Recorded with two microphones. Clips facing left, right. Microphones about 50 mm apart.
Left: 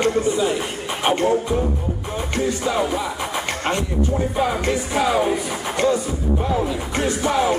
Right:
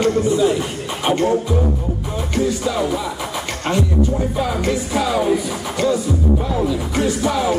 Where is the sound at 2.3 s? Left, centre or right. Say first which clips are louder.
Right 2 dB; centre.